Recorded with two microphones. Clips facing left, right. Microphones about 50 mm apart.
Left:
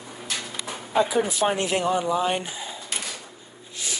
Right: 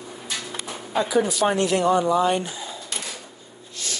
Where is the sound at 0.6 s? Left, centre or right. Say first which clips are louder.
Left 3 dB; centre.